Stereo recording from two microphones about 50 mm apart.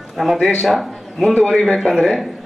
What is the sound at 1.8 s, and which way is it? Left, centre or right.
Speech, centre.